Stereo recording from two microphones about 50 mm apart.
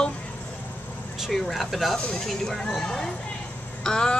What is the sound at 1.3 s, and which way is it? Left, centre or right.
Speech, centre.